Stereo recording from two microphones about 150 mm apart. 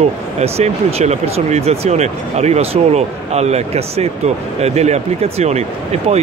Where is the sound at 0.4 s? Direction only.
45° right (ahead or behind).